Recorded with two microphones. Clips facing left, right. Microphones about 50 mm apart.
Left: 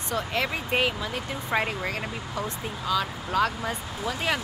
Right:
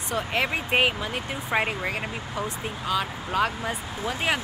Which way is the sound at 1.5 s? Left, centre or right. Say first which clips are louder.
Right 1 dB; centre.